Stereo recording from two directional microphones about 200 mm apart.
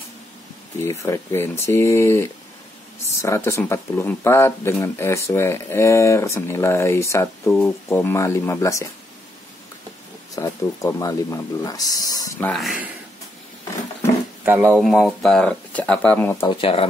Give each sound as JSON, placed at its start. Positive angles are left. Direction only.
{"t": 0.8, "sound": "speech", "side_deg": 15}
{"t": 10.3, "sound": "speech", "side_deg": 15}
{"t": 12.4, "sound": "speech", "side_deg": 0}
{"t": 14.4, "sound": "speech", "side_deg": -10}
{"t": 16.4, "sound": "speech", "side_deg": 30}